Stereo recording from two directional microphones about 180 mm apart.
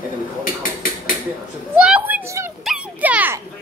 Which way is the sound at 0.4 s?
50° left (ahead or behind).